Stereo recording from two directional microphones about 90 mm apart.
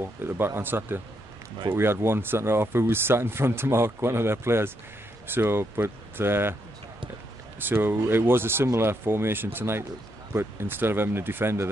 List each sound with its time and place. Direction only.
0.0 s speech: 25° right (ahead or behind)
7.6 s speech: 25° right (ahead or behind)